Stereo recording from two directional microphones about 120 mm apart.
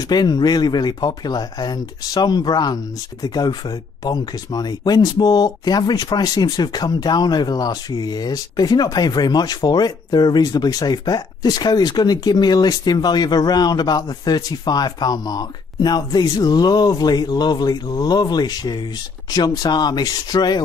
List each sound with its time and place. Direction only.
0.1 s speech: 35° left (ahead or behind)